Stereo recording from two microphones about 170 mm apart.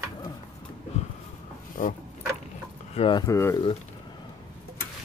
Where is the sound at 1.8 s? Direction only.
50° left (ahead or behind).